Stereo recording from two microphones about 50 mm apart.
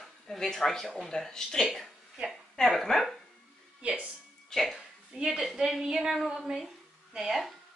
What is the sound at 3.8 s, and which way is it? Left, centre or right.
Speech, right.